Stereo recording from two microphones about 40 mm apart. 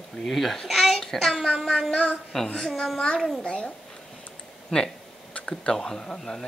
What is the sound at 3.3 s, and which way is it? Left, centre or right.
Speech, left.